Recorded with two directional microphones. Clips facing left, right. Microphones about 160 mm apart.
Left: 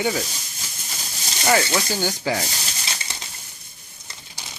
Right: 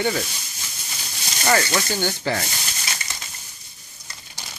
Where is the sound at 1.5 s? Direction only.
10° left (ahead or behind).